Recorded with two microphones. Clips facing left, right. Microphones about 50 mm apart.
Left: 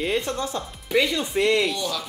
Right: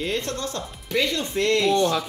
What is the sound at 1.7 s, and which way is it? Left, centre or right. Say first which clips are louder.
Speech: right 8 dB; right.